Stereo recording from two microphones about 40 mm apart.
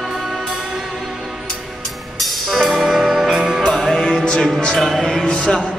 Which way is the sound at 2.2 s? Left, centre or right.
Centre.